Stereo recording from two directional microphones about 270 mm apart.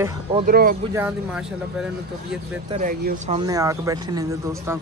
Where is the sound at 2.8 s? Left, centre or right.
Right.